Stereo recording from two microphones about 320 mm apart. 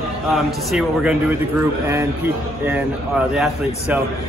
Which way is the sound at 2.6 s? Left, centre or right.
Centre.